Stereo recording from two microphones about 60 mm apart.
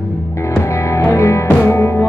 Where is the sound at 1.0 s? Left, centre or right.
Left.